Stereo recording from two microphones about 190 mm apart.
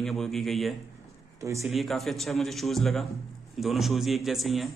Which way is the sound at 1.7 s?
Centre (ahead or behind).